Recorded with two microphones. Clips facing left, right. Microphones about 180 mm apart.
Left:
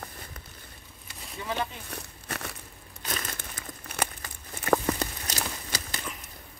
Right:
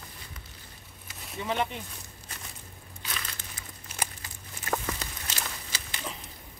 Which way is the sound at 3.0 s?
45° left (ahead or behind).